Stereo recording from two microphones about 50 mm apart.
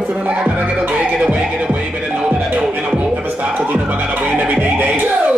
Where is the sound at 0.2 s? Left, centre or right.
Right.